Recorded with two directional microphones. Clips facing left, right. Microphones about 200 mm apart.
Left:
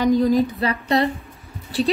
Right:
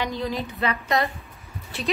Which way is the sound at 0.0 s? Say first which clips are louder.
Left 11 dB; 45° left (ahead or behind).